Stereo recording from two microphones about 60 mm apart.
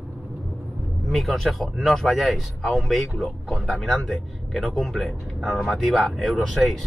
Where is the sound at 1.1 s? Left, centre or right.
Centre.